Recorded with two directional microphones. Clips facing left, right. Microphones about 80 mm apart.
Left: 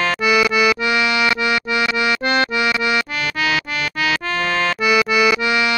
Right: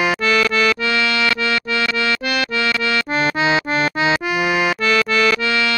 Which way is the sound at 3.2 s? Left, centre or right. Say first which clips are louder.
Right 4 dB; right.